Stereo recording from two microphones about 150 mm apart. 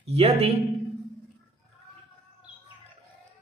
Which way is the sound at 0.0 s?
40° right (ahead or behind).